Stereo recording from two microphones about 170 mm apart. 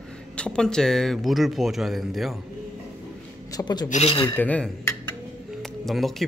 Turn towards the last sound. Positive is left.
turn(degrees=0)  # may be behind; listen again after turning